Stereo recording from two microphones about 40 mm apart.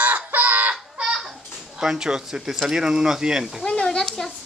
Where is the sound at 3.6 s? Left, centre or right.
Left.